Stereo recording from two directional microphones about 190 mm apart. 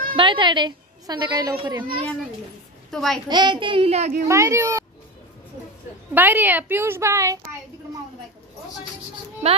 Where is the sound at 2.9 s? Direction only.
Centre (ahead or behind).